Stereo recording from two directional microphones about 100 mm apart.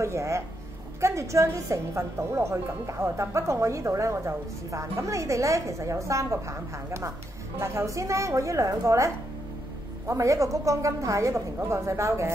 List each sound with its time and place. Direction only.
0.0 s a woman's voice: 30° right (ahead or behind)